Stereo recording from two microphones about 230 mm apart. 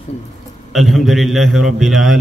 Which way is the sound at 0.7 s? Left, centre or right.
Centre.